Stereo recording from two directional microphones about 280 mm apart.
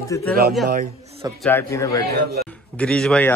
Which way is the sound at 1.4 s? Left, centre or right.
Centre.